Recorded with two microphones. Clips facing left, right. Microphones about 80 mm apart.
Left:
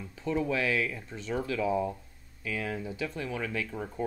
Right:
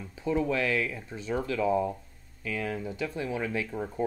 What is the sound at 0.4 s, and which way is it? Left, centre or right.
Speech, centre.